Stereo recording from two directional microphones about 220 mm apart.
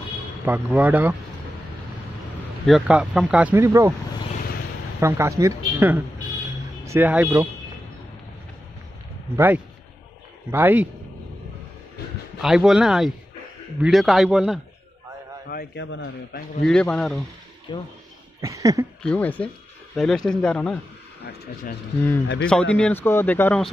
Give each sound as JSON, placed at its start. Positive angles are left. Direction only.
{"t": 0.5, "sound": "speech", "side_deg": -5}
{"t": 2.6, "sound": "speech", "side_deg": 0}
{"t": 5.0, "sound": "speech", "side_deg": -10}
{"t": 10.5, "sound": "speech", "side_deg": -10}
{"t": 12.4, "sound": "speech", "side_deg": 0}
{"t": 15.5, "sound": "a man's voice", "side_deg": 45}
{"t": 16.6, "sound": "speech", "side_deg": 5}
{"t": 17.7, "sound": "speech", "side_deg": 20}
{"t": 18.4, "sound": "speech", "side_deg": -15}
{"t": 19.0, "sound": "speech", "side_deg": 5}
{"t": 22.4, "sound": "speech", "side_deg": 5}